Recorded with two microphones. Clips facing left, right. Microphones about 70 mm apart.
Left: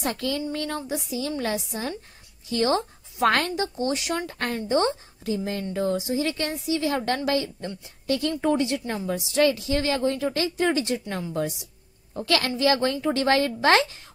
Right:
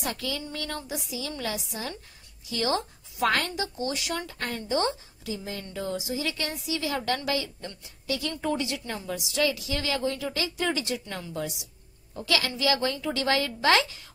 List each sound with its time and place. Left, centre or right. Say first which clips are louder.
0.0 s a woman's voice: left 5 dB; left
4.3 s a woman's voice: left 5 dB; left
7.0 s a woman's voice: left 3 dB; left
8.1 s a woman's voice: left 6 dB; left